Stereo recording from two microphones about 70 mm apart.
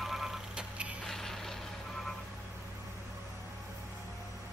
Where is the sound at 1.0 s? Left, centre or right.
Centre.